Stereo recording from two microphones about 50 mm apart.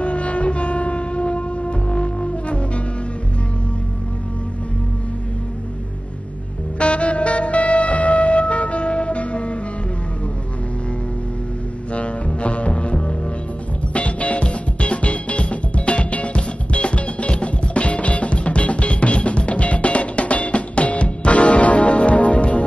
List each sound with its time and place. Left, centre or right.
0.0 s train: left
6.8 s music: left
11.9 s double bass: left
13.9 s music: left